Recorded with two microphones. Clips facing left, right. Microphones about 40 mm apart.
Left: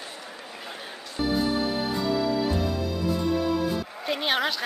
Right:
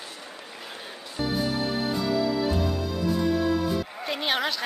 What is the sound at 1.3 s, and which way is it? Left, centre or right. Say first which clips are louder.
Music: left 2 dB; centre.